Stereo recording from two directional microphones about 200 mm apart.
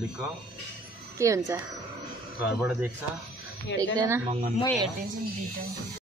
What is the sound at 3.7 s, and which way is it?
Speech, 60° left (ahead or behind).